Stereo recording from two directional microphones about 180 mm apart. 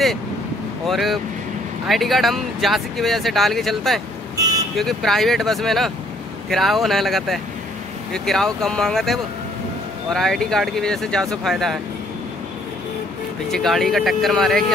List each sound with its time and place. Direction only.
0.8 s speech: centre (ahead or behind)
4.4 s vehicle: 20° right (ahead or behind)
4.7 s speech: centre (ahead or behind)
13.5 s speech: centre (ahead or behind)